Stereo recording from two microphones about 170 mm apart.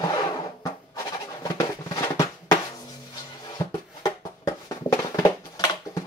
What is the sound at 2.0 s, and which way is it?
Drum, 20° left (ahead or behind).